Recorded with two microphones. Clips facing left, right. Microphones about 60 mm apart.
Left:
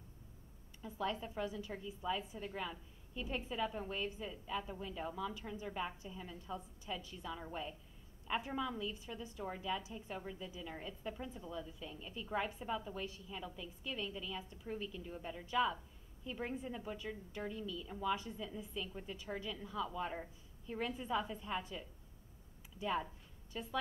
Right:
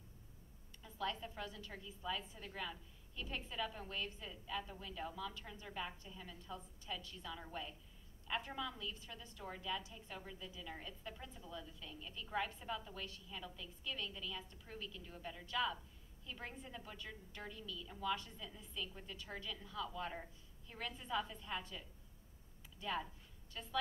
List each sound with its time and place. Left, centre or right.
0.8 s a woman's voice: centre